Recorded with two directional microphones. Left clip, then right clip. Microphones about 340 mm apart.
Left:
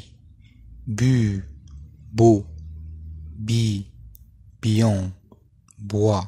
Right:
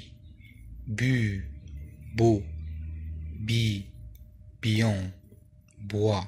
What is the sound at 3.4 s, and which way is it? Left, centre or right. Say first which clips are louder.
Speech: left 3 dB; left.